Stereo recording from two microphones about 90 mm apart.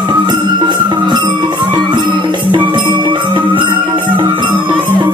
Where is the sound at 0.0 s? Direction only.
55° right (ahead or behind).